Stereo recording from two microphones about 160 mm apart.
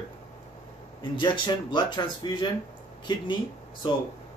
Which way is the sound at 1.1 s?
30° left (ahead or behind).